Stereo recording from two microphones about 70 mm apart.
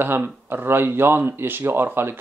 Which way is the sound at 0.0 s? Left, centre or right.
Right.